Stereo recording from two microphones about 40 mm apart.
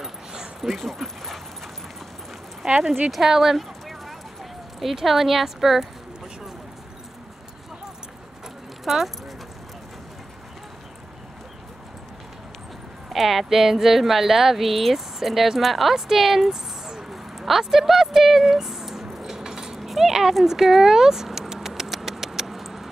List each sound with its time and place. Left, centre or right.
0.0 s dog: centre
0.7 s speech: centre
2.6 s speech: right
3.1 s speech: centre
3.5 s clip-clop: centre
8.8 s speech: centre
13.1 s speech: centre
16.4 s a sound: centre